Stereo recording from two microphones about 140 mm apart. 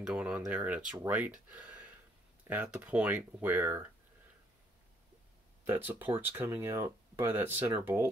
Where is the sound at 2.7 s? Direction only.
10° right (ahead or behind).